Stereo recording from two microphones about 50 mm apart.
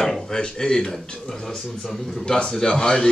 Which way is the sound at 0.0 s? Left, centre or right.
Centre.